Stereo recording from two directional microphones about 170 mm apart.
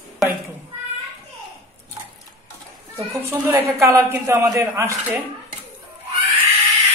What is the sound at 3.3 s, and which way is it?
A man's voice, 15° right (ahead or behind).